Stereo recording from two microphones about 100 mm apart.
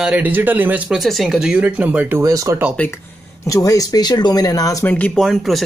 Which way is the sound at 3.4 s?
35° left (ahead or behind).